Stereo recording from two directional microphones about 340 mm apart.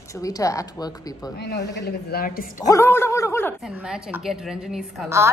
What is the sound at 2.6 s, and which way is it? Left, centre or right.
A woman's voice, centre.